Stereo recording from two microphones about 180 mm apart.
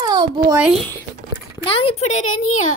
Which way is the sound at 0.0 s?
20° right (ahead or behind).